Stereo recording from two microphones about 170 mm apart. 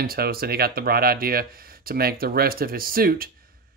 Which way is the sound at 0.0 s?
60° right (ahead or behind).